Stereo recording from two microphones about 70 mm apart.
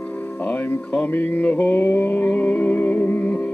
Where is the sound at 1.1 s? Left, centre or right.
Left.